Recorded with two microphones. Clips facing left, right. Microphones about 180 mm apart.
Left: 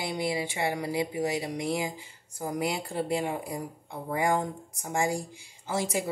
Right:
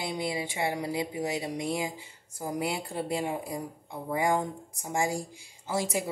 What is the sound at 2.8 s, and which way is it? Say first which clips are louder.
Speech: left 2 dB; 20° right (ahead or behind).